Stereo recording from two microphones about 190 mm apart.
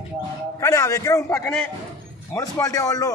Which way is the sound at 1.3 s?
5° left (ahead or behind).